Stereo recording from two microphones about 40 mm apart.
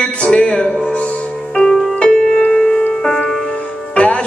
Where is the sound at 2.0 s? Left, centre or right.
Left.